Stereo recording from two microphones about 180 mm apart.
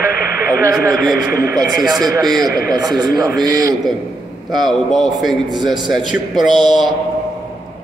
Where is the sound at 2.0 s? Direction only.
20° right (ahead or behind).